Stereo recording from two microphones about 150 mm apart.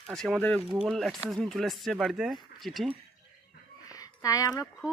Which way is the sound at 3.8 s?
25° left (ahead or behind).